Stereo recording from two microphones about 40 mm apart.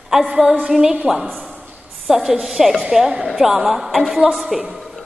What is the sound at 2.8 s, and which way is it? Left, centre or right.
A woman's voice, centre.